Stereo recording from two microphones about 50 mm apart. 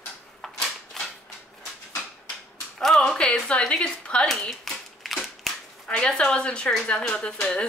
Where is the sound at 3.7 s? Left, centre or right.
Centre.